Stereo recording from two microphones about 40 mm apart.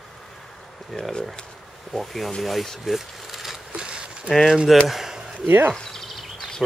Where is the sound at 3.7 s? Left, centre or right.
Right.